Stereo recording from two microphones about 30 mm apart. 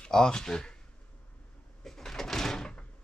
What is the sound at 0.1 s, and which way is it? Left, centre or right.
Speech, left.